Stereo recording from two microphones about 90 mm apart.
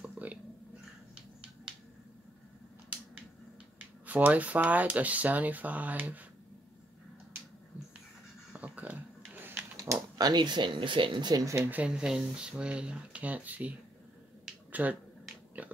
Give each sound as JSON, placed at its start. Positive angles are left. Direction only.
{"t": 0.0, "sound": "a sound", "side_deg": -15}
{"t": 1.1, "sound": "finger snapping", "side_deg": -10}
{"t": 4.0, "sound": "speech", "side_deg": -20}
{"t": 8.5, "sound": "a sound", "side_deg": -15}
{"t": 10.1, "sound": "speech", "side_deg": -50}
{"t": 11.7, "sound": "speech", "side_deg": -15}
{"t": 14.7, "sound": "finger snapping", "side_deg": -15}
{"t": 15.6, "sound": "pig", "side_deg": -15}